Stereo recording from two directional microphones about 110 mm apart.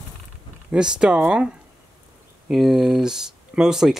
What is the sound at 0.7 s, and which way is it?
Speech, 10° right (ahead or behind).